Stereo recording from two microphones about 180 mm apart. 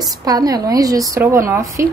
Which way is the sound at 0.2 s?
20° right (ahead or behind).